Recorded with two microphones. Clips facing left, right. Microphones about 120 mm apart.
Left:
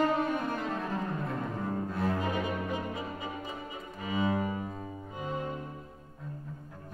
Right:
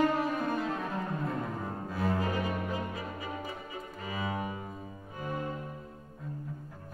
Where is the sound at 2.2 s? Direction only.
20° left (ahead or behind).